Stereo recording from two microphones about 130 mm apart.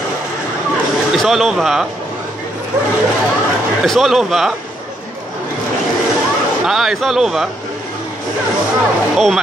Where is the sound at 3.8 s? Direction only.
Centre (ahead or behind).